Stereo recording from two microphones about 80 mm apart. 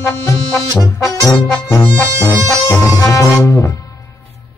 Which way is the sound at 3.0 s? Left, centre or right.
Left.